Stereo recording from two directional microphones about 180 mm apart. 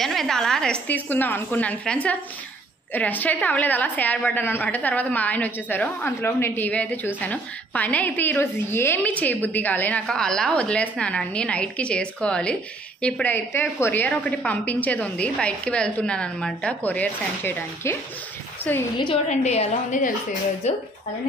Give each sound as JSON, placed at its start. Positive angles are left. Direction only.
{"t": 0.0, "sound": "a woman's voice", "side_deg": 0}
{"t": 19.2, "sound": "a woman's voice", "side_deg": 40}